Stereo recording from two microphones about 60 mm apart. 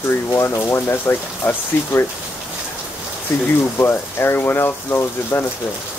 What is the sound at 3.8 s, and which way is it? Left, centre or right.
Speech, left.